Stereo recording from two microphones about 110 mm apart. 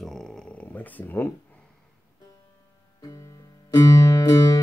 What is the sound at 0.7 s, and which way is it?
Speech, 15° left (ahead or behind).